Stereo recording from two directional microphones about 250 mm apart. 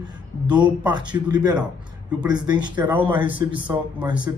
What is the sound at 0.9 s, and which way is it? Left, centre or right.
Speech, centre.